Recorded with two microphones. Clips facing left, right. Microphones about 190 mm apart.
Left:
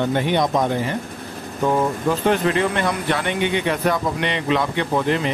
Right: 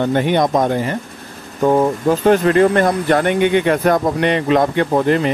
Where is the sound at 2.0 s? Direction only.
45° right (ahead or behind).